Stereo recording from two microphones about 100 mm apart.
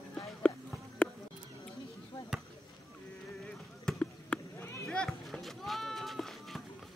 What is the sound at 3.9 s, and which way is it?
Basketball bounce, 10° left (ahead or behind).